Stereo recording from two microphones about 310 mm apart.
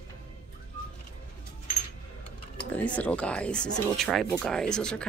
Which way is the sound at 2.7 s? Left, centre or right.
Centre.